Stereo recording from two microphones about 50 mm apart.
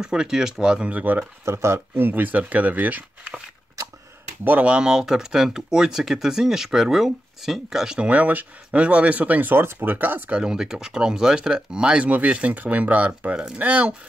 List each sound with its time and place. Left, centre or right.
0.0 s speech: centre
0.9 s speech: right
1.4 s speech: right
2.0 s speech: right
4.6 s speech: centre
8.1 s speech: right
9.6 s speech: right
9.8 s speech: right
10.5 s speech: centre; by 13.9 s right